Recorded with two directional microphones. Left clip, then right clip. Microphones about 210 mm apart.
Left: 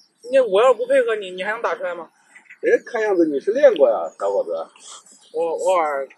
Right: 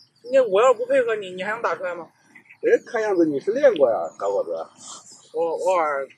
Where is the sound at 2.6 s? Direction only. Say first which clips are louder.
Left 1 dB; 10° right (ahead or behind).